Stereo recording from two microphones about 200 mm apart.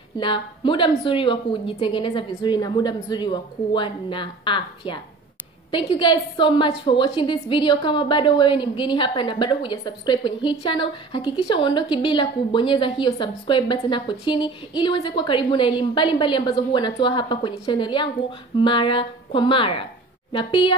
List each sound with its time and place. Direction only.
0.2 s a woman's voice: 25° left (ahead or behind)